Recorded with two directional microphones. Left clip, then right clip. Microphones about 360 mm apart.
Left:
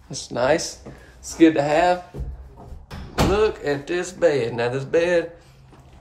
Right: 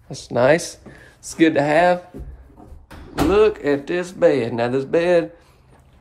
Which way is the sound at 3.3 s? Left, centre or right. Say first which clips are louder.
Right 6 dB; centre.